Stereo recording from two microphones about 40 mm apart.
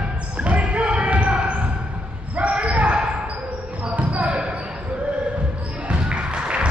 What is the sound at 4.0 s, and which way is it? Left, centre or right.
Basketball bounce, right.